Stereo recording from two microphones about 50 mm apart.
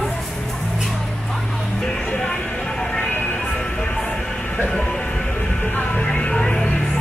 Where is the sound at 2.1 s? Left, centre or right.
Centre.